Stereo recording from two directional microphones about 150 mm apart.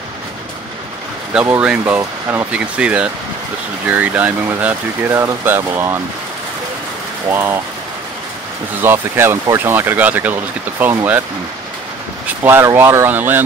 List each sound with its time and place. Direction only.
1.3 s speech: 10° right (ahead or behind)
7.2 s speech: 15° right (ahead or behind)
8.8 s speech: 15° right (ahead or behind)
12.3 s speech: 15° right (ahead or behind)